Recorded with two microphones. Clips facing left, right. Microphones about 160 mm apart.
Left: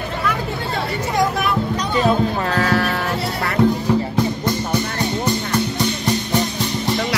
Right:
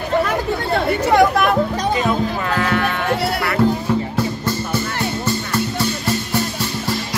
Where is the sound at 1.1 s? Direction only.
60° right (ahead or behind).